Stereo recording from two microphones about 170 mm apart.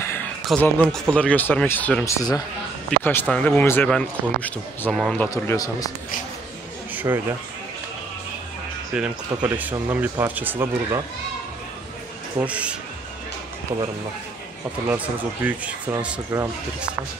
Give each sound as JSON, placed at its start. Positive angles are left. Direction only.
{"t": 0.0, "sound": "a sound", "side_deg": 15}
{"t": 0.5, "sound": "speech", "side_deg": 5}
{"t": 2.0, "sound": "speech", "side_deg": 20}
{"t": 5.3, "sound": "speech", "side_deg": 20}
{"t": 7.0, "sound": "speech", "side_deg": -10}
{"t": 8.9, "sound": "speech", "side_deg": -5}
{"t": 12.4, "sound": "speech", "side_deg": -10}
{"t": 15.4, "sound": "speech", "side_deg": -10}